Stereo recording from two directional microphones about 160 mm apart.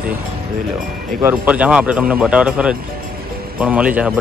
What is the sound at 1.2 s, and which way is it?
Speech, 10° right (ahead or behind).